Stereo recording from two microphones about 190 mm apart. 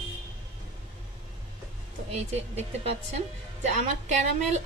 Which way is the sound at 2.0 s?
35° right (ahead or behind).